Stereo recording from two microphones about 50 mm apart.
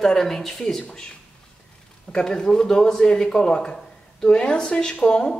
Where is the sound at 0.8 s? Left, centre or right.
Centre.